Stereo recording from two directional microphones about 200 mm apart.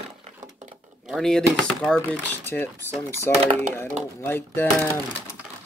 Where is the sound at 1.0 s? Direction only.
Centre (ahead or behind).